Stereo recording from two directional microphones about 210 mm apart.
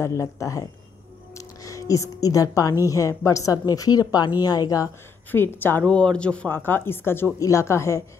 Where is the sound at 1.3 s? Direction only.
15° left (ahead or behind).